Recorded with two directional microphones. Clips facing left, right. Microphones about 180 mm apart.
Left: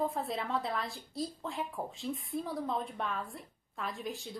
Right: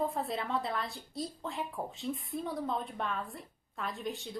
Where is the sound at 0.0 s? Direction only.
Centre (ahead or behind).